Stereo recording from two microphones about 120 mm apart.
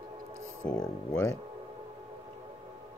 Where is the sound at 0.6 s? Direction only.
15° left (ahead or behind).